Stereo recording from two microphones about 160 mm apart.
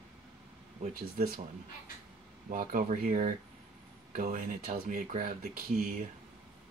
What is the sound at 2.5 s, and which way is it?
Speech, 60° right (ahead or behind).